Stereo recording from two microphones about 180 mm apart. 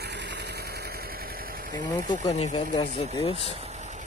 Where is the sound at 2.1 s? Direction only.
25° left (ahead or behind).